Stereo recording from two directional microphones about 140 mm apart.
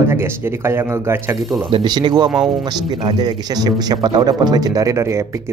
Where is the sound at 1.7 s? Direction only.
35° right (ahead or behind).